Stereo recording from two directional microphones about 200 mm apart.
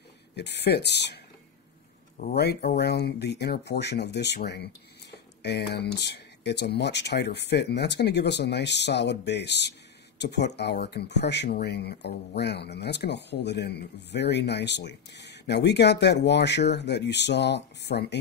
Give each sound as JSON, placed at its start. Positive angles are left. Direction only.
{"t": 0.4, "sound": "speech", "side_deg": 55}